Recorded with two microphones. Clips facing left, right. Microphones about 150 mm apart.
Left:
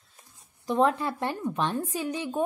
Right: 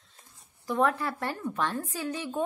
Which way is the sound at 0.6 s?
20° left (ahead or behind).